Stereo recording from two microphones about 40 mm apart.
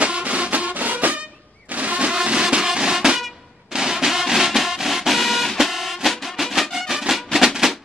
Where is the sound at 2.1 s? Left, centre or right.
Right; by 6.9 s centre.